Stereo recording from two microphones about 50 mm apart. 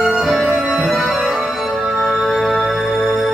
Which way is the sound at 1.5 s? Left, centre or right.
Centre.